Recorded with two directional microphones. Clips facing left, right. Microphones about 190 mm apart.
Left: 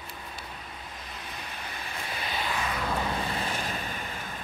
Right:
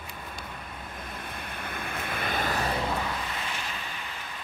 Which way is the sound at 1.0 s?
55° right (ahead or behind).